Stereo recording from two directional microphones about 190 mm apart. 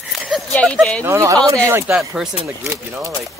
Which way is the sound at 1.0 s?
15° right (ahead or behind).